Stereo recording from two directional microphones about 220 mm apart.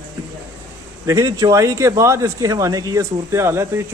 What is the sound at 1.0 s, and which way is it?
Speech, 15° right (ahead or behind).